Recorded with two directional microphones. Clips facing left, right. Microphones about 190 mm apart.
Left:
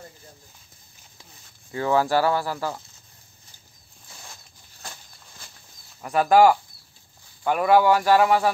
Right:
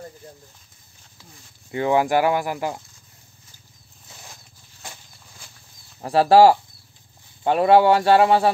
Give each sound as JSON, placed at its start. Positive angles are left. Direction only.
{"t": 1.7, "sound": "speech", "side_deg": -20}
{"t": 5.9, "sound": "speech", "side_deg": -30}